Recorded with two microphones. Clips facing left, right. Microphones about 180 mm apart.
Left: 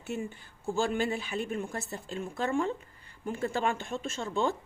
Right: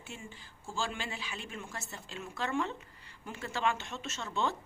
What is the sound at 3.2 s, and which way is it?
Speech, 50° left (ahead or behind).